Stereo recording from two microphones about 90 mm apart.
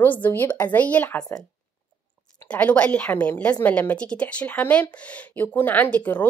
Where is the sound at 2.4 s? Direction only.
15° left (ahead or behind).